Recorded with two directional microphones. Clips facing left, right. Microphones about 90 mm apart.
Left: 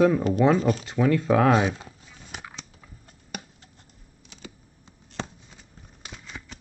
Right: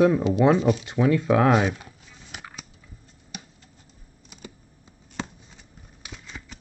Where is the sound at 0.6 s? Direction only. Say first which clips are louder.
Right 2 dB; 40° left (ahead or behind).